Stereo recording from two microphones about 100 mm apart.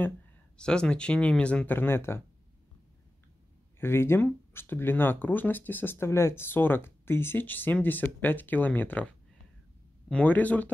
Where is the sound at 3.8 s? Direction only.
25° left (ahead or behind).